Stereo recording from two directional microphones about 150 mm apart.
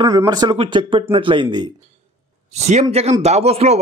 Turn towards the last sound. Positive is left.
turn(degrees=-45)  # may be behind; listen again after turning